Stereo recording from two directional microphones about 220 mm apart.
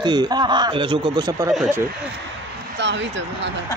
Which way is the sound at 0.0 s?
20° right (ahead or behind).